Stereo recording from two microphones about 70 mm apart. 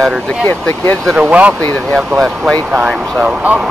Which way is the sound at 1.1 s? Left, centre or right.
Centre.